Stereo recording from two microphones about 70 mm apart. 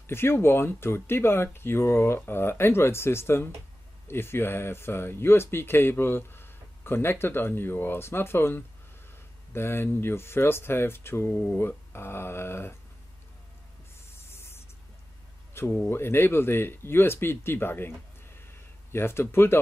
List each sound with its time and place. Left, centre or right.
0.0 s speech: left
14.1 s spray: left
15.6 s a sound: left
15.9 s speech: left